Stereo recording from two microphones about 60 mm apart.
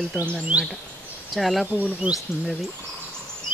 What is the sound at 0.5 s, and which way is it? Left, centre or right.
Speech, right.